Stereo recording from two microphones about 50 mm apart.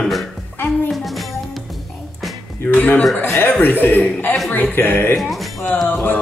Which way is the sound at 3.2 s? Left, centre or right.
Left.